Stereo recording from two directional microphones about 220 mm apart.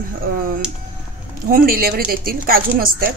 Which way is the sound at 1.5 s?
45° right (ahead or behind).